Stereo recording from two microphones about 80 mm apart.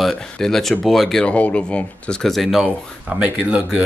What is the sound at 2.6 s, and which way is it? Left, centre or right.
Speech, centre.